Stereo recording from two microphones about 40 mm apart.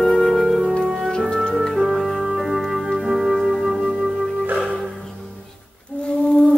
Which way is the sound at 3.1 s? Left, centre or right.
Centre.